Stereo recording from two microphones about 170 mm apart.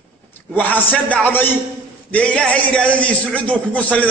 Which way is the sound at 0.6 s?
10° left (ahead or behind).